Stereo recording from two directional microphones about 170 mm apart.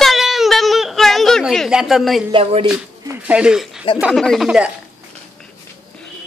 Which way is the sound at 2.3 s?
35° right (ahead or behind).